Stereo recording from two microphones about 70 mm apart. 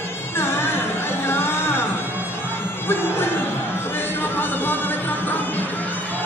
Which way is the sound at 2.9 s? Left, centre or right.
Left.